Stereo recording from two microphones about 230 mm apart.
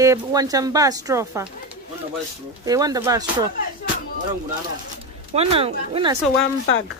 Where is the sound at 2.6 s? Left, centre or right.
Centre.